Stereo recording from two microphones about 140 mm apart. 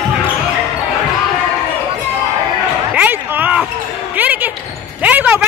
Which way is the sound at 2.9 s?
10° right (ahead or behind).